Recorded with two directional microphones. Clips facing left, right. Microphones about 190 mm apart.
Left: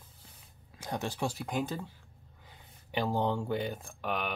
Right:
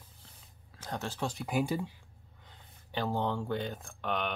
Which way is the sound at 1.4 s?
10° right (ahead or behind).